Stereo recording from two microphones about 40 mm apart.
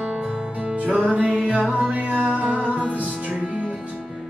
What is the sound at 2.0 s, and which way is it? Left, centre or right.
Music, right.